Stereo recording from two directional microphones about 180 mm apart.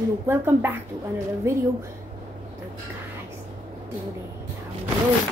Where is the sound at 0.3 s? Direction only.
10° right (ahead or behind).